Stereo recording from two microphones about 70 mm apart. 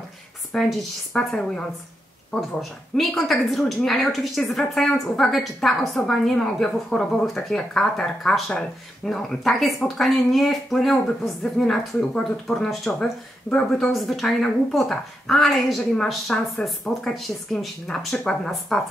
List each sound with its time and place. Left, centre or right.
0.5 s speech: centre
3.0 s a woman's voice: centre